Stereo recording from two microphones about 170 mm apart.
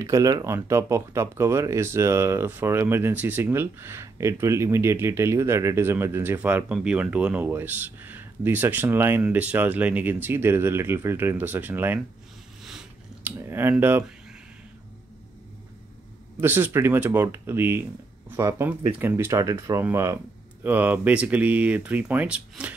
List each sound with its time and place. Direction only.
0.0 s speech: 20° right (ahead or behind)
12.6 s a sound: 5° right (ahead or behind)
13.5 s speech: 15° right (ahead or behind)
16.3 s speech: 10° right (ahead or behind)